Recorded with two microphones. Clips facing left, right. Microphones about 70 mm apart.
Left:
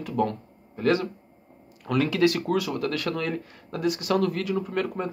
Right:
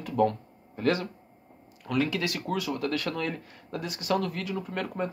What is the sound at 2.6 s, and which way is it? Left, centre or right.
Speech, right.